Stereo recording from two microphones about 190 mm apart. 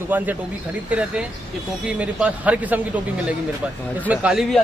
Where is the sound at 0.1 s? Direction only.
10° right (ahead or behind).